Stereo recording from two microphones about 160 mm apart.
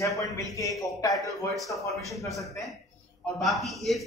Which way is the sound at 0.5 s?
20° left (ahead or behind).